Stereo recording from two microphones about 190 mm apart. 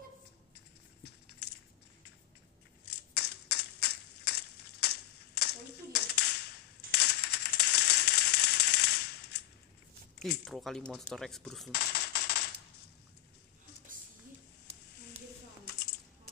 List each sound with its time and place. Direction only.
3.2 s crushing: 60° left (ahead or behind)
5.9 s a sound: 60° left (ahead or behind)
6.9 s rattle: 60° left (ahead or behind)
10.1 s speech: centre (ahead or behind)
11.7 s typing: 55° left (ahead or behind)